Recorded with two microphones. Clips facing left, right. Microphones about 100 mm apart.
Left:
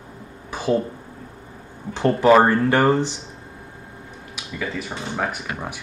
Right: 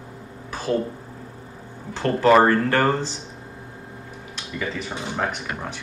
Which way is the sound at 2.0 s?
15° left (ahead or behind).